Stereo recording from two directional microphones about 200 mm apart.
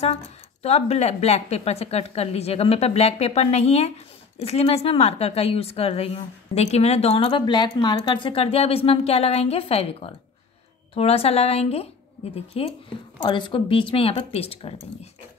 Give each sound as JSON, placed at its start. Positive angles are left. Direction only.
{"t": 0.0, "sound": "a woman's voice", "side_deg": 30}